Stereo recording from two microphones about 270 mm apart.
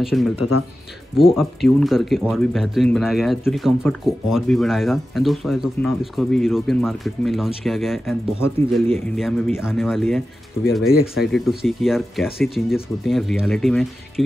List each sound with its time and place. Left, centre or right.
0.0 s speech: centre
0.4 s speech: left
1.2 s speech: centre